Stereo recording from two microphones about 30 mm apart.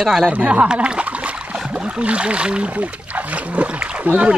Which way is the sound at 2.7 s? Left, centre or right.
Right.